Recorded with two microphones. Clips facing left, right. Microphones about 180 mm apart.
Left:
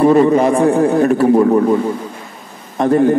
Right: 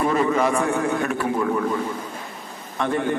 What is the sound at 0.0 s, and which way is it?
A man's voice, 35° left (ahead or behind).